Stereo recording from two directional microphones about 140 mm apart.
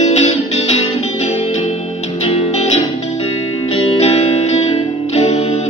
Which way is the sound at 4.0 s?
50° left (ahead or behind).